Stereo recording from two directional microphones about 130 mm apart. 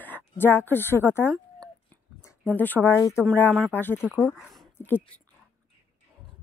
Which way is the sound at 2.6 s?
15° left (ahead or behind).